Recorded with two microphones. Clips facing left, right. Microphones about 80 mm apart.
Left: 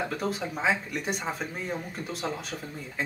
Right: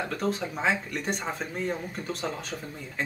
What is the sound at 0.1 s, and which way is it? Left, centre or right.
Speech, centre.